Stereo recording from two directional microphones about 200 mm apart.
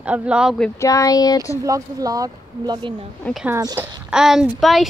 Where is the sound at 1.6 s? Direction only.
15° right (ahead or behind).